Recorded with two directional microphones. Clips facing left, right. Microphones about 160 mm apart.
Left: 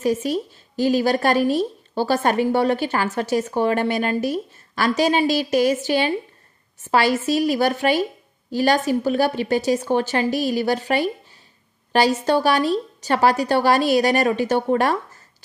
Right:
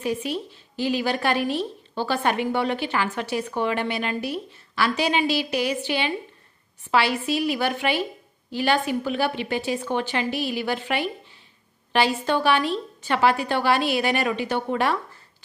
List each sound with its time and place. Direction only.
0.0 s a woman's voice: 40° left (ahead or behind)